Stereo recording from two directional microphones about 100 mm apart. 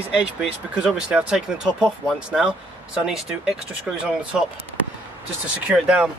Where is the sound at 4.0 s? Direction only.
10° right (ahead or behind).